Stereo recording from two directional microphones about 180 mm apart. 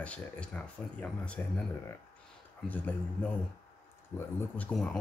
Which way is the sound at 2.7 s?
10° left (ahead or behind).